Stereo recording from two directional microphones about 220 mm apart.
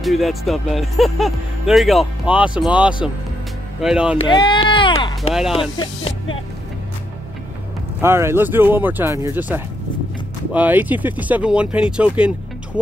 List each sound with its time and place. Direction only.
0.0 s speech: centre (ahead or behind)
4.2 s a sound: 20° left (ahead or behind)
5.3 s speech: centre (ahead or behind)
8.0 s speech: 10° right (ahead or behind)